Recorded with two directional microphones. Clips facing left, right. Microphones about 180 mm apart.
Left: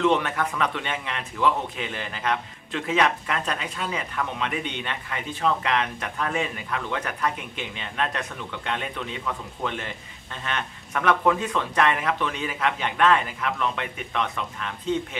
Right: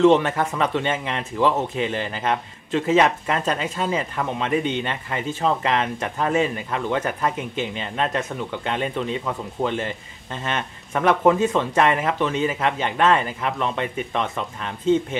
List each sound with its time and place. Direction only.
0.0 s a man's voice: 30° right (ahead or behind)